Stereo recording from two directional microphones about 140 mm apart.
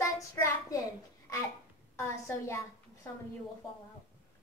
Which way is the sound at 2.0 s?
20° left (ahead or behind).